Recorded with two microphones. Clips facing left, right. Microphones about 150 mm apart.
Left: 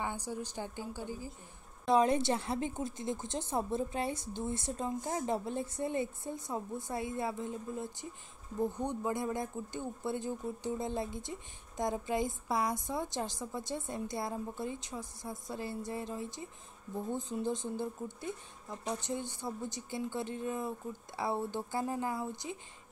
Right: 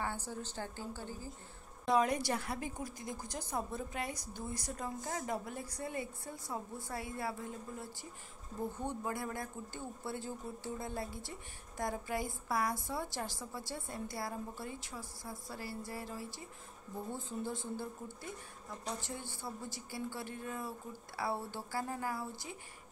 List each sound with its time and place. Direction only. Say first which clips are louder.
0.0 s a woman's voice: left 2 dB; 15° left (ahead or behind)
1.9 s speech: left 4 dB; 25° left (ahead or behind)